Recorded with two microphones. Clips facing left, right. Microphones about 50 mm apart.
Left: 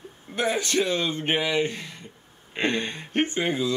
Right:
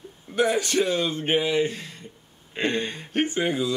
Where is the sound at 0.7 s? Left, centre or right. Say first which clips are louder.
Right 1 dB; left.